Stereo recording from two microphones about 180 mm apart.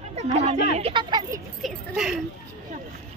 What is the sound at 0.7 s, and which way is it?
Speech, 30° right (ahead or behind).